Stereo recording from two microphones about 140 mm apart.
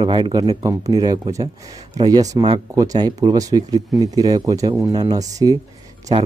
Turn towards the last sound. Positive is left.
turn(degrees=-35)  # may be behind; listen again after turning